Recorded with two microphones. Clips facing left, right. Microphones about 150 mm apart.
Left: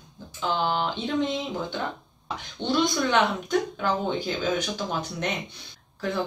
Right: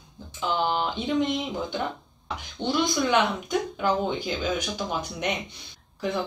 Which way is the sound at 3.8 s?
10° right (ahead or behind).